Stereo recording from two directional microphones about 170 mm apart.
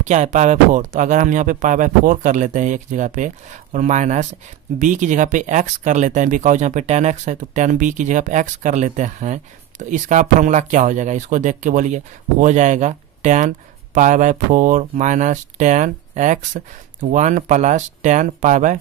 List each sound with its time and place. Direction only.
0.0 s speech: 45° right (ahead or behind)